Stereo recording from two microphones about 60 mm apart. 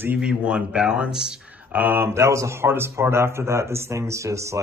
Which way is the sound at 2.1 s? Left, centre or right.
Right.